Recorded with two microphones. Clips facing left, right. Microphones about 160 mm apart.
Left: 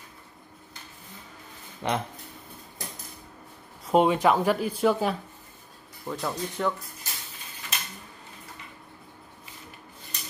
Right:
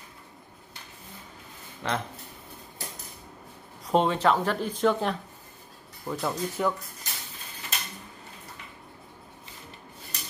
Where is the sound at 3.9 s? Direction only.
10° left (ahead or behind).